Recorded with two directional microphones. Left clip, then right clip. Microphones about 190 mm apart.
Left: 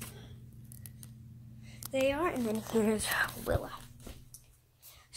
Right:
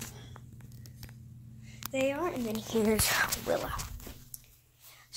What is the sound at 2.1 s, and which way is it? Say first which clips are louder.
Speech: left 1 dB; 35° left (ahead or behind).